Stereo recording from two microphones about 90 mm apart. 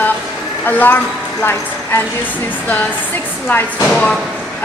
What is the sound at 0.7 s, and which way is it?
A woman's voice, 20° left (ahead or behind).